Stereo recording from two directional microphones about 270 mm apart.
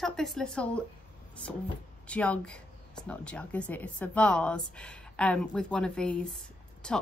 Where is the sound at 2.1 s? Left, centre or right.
Centre.